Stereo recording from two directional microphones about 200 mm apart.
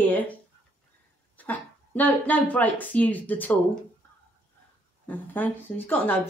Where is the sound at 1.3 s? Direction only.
10° left (ahead or behind).